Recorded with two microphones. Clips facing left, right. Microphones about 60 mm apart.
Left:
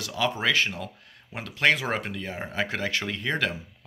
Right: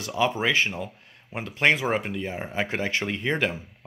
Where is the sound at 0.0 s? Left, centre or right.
Right.